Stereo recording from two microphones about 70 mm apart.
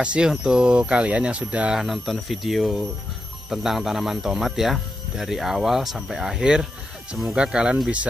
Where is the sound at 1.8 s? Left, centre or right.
Centre.